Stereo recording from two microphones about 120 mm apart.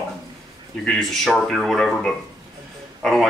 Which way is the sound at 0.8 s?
Centre (ahead or behind).